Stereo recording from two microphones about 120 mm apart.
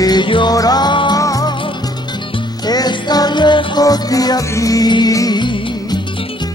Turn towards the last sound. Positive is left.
turn(degrees=40)  # may be behind; listen again after turning